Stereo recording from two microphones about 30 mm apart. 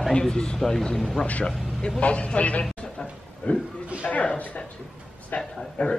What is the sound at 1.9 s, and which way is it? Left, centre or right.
Speech, left.